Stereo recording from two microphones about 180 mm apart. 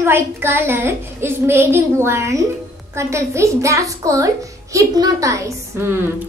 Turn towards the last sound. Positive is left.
turn(degrees=-15)  # may be behind; listen again after turning